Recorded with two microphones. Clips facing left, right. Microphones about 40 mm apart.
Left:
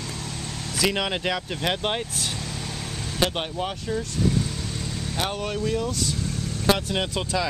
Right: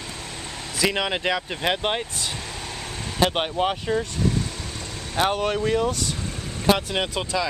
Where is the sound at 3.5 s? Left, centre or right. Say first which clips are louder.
Right 5 dB; right.